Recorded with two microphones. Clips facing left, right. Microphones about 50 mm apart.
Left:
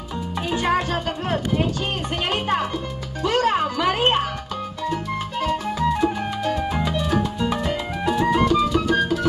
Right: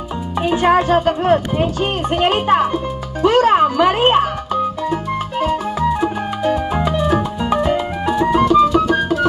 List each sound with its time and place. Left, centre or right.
0.5 s speech: right
5.8 s music: right; by 9.0 s centre